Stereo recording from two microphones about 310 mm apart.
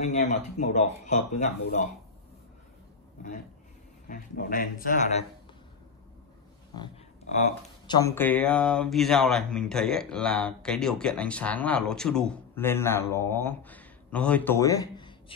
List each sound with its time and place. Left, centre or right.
0.0 s speech: left
4.1 s speech: left
7.3 s speech: centre